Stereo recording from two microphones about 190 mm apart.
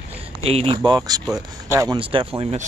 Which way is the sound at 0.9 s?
20° right (ahead or behind).